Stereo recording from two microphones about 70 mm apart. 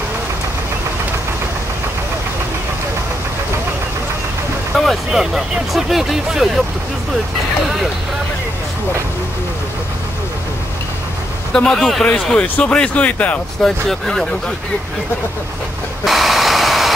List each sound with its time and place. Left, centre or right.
4.7 s speech: centre
11.5 s speech: centre
12.4 s speech: centre
13.6 s speech: centre
16.0 s vehicle: centre